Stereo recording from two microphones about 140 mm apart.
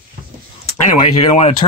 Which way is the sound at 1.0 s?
45° left (ahead or behind).